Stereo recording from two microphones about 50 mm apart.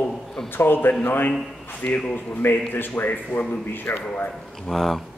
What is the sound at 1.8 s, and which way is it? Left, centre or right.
Speech, left.